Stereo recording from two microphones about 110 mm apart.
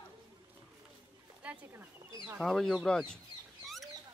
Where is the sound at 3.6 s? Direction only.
Centre (ahead or behind).